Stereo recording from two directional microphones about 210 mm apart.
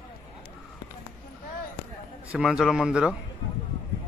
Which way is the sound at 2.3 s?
5° right (ahead or behind).